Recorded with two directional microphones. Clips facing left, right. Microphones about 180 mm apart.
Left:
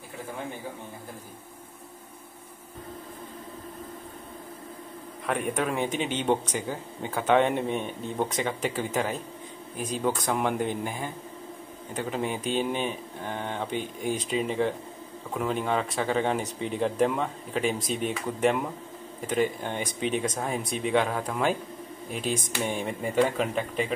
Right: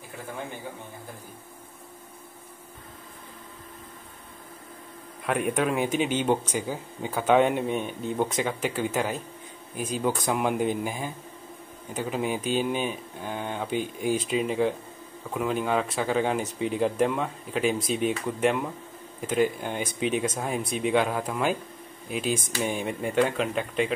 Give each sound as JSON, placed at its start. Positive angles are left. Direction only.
{"t": 5.2, "sound": "speech", "side_deg": 0}